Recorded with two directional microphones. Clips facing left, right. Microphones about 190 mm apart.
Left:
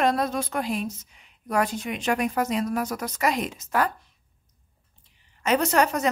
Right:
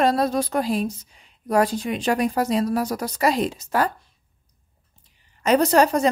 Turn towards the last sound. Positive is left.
turn(degrees=-35)  # may be behind; listen again after turning